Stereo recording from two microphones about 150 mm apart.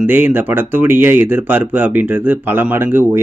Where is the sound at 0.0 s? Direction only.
10° right (ahead or behind).